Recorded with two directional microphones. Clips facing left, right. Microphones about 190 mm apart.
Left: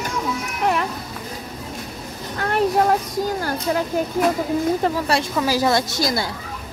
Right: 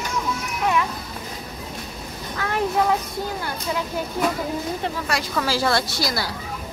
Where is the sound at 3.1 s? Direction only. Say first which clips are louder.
Left 5 dB; 40° left (ahead or behind).